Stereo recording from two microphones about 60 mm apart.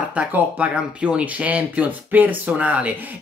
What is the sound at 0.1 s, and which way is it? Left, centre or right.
Speech, right.